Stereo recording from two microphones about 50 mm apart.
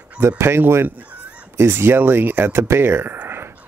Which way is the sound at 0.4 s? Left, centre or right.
Right.